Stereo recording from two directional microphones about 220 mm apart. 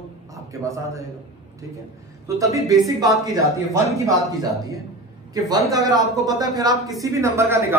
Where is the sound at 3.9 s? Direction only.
15° right (ahead or behind).